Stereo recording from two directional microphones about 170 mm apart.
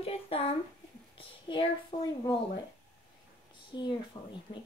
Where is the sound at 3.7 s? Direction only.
25° left (ahead or behind).